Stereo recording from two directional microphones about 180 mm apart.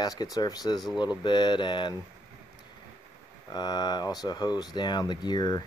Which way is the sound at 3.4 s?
25° left (ahead or behind).